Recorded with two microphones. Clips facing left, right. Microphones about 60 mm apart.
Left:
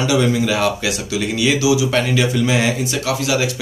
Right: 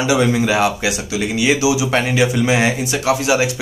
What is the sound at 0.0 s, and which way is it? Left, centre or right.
Speech, centre.